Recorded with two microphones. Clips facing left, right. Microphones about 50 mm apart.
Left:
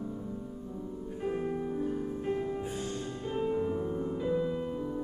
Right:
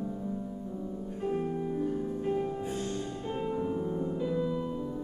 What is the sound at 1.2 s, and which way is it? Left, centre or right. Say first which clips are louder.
Music: right 1 dB; centre.